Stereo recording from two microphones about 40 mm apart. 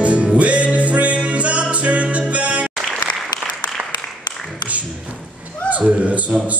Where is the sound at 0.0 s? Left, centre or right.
Right.